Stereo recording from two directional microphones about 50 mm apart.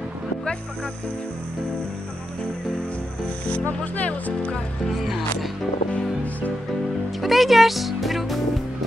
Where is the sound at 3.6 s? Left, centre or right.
Left.